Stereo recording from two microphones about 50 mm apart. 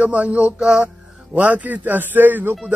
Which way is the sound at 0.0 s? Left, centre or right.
Right.